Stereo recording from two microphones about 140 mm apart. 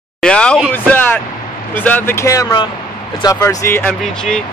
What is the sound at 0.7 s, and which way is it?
Speech, 10° left (ahead or behind).